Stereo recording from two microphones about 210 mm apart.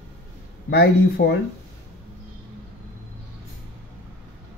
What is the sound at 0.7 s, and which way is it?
Speech, 50° left (ahead or behind).